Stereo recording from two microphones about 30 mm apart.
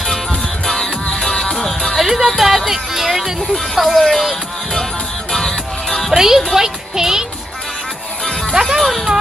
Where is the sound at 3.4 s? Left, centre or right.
Centre.